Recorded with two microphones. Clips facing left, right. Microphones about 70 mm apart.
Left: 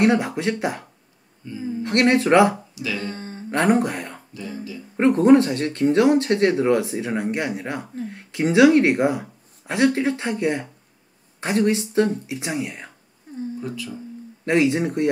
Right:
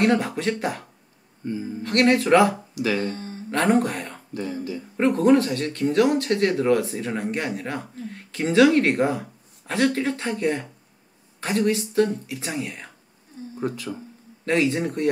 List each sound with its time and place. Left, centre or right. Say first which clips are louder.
0.0 s speech: left 2 dB; centre
1.4 s speech: right 3 dB; right
1.8 s speech: left 1 dB; left
2.7 s speech: right 4 dB; right
3.2 s a sound: even; left
3.6 s speech: left 1 dB; centre
4.3 s speech: right 4 dB; right
4.9 s speech: left 4 dB; left
13.6 s speech: right 3 dB; right
14.4 s speech: left 3 dB; centre